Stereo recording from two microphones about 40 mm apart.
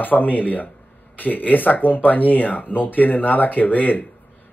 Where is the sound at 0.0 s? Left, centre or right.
Left.